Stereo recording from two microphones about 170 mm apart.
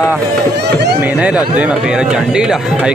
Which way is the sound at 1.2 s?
5° right (ahead or behind).